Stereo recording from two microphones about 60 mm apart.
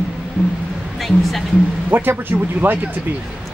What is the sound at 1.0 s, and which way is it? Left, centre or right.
Speech, centre.